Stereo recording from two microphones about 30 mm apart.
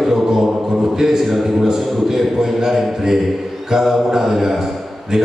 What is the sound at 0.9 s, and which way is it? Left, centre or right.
A man's voice, centre.